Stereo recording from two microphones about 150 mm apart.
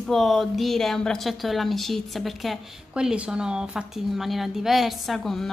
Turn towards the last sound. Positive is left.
turn(degrees=0)  # may be behind; listen again after turning